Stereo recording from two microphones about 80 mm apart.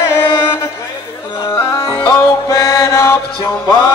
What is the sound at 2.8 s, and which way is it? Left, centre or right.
Mantra, left.